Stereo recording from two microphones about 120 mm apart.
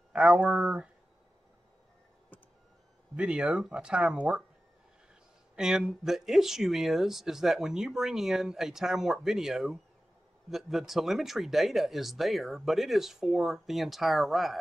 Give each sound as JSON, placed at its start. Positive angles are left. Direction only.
{"t": 0.1, "sound": "speech", "side_deg": -10}
{"t": 3.2, "sound": "speech", "side_deg": -5}
{"t": 5.6, "sound": "speech", "side_deg": -5}